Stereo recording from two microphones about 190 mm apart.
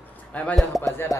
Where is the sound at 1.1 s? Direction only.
20° left (ahead or behind).